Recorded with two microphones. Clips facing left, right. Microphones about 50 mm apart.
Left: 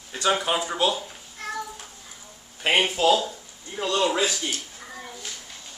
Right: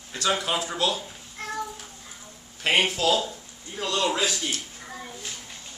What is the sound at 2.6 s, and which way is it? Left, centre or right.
Speech, centre.